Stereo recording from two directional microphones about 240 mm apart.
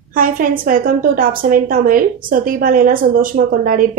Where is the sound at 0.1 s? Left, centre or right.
Right.